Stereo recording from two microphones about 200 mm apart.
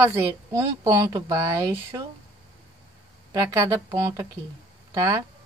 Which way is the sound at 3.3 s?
15° right (ahead or behind).